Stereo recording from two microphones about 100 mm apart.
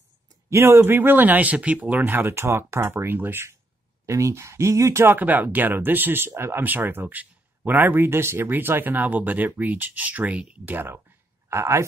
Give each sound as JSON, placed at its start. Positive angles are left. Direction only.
{"t": 0.5, "sound": "speech", "side_deg": -25}